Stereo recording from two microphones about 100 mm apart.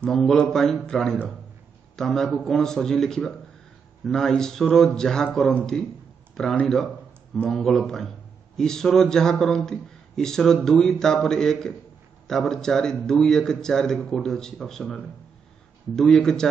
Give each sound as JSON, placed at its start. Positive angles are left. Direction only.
{"t": 0.0, "sound": "speech", "side_deg": 5}